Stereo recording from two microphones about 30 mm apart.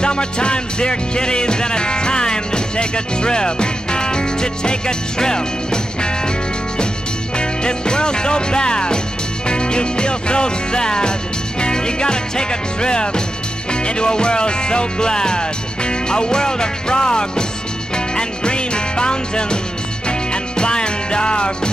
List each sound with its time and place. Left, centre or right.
0.0 s music: left
7.3 s music: left